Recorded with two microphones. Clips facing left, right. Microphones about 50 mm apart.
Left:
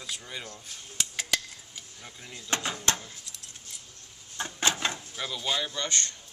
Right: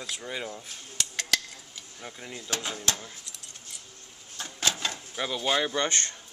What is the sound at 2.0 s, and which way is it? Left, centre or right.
Speech, centre.